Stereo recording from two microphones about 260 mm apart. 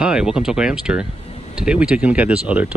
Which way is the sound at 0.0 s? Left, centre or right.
Centre.